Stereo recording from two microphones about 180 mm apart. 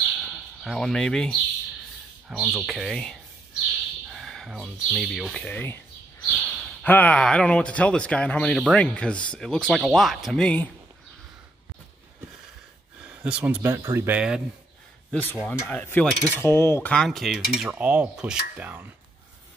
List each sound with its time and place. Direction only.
0.0 s bird: centre (ahead or behind)
2.2 s speech: centre (ahead or behind)
13.1 s speech: 5° right (ahead or behind)
15.0 s speech: 10° left (ahead or behind)
15.7 s cutlery: 10° left (ahead or behind)
16.3 s speech: 10° left (ahead or behind); by 18.9 s 10° right (ahead or behind)